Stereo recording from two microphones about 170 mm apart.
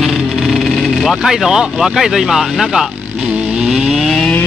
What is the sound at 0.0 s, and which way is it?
Speech, centre (ahead or behind).